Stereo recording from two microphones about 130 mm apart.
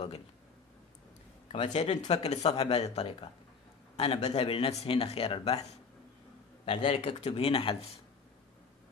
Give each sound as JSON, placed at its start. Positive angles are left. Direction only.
{"t": 1.5, "sound": "speech", "side_deg": 55}